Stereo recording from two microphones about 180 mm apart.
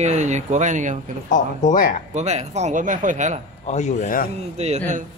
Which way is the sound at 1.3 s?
45° left (ahead or behind).